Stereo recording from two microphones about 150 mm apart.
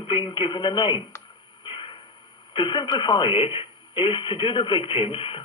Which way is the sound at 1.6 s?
35° left (ahead or behind).